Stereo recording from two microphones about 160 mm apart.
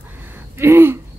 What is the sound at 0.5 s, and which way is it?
Gasp, 15° right (ahead or behind).